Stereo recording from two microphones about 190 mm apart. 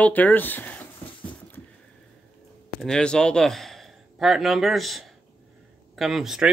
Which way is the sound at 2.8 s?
5° left (ahead or behind).